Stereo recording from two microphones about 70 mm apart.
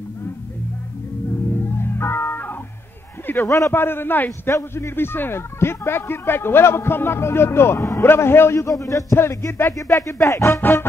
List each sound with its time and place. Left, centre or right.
1.8 s music: left
3.3 s a man's voice: left
3.7 s speech: left
4.5 s speech: left
10.6 s speech: left